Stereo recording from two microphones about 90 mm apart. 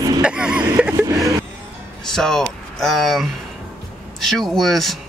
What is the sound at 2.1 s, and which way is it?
Speech, 5° left (ahead or behind).